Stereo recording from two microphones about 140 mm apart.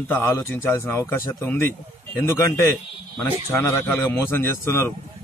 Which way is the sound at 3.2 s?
20° left (ahead or behind).